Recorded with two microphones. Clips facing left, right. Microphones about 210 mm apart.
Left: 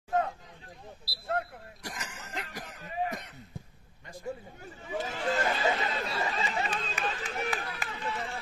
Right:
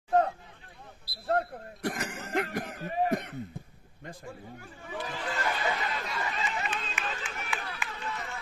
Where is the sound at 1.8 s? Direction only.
55° right (ahead or behind).